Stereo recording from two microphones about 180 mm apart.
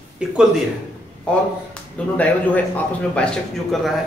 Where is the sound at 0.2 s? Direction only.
5° right (ahead or behind).